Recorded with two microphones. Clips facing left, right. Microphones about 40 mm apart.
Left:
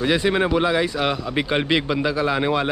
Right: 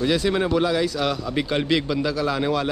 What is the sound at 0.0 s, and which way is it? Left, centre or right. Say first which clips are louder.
A man's voice: left 2 dB; left.